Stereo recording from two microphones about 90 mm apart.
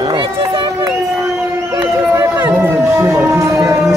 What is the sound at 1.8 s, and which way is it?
Run, 20° right (ahead or behind).